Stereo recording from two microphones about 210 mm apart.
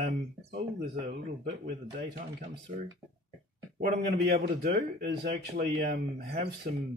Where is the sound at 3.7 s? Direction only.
50° right (ahead or behind).